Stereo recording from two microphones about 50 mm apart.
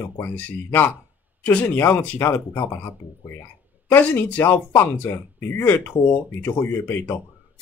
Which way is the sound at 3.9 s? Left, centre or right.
Left.